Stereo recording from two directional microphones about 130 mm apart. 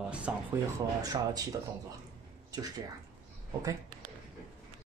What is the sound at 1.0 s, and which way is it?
Speech, 30° right (ahead or behind).